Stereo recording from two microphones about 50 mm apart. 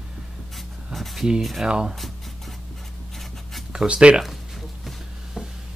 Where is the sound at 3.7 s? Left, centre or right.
Right.